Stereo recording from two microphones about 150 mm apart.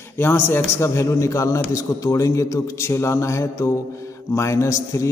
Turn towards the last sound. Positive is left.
turn(degrees=20)  # may be behind; listen again after turning